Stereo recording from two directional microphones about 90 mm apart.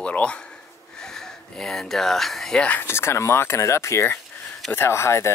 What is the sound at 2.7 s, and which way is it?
Speech, 25° left (ahead or behind).